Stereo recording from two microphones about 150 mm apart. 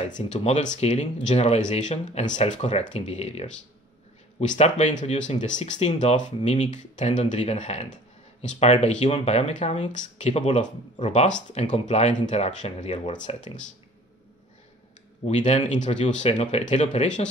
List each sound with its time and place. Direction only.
0.2 s speech: 45° left (ahead or behind)
15.2 s speech: 50° left (ahead or behind)